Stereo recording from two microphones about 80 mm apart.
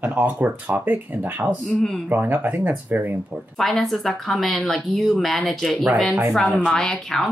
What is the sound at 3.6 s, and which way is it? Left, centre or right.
Speech, centre.